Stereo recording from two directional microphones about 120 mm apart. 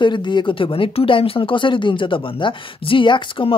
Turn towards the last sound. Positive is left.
turn(degrees=45)  # may be behind; listen again after turning